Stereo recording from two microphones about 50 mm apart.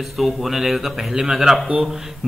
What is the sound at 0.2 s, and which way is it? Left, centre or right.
A man's voice, centre.